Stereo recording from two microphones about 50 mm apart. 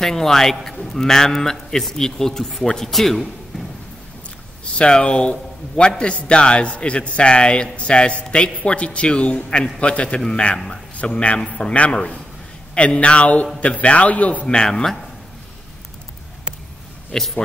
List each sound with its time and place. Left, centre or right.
0.0 s a man's voice: centre
4.7 s a man's voice: centre
17.1 s a man's voice: centre